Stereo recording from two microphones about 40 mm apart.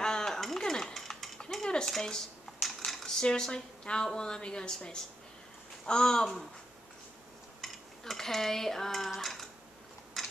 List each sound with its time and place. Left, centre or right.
0.0 s a sound: centre
0.4 s cutlery: centre
1.9 s a sound: centre
3.2 s a woman's voice: centre
7.6 s cutlery: centre
10.2 s scissors: centre